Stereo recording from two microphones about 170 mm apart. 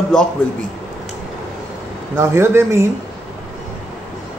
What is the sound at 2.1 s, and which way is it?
Speech, 15° right (ahead or behind).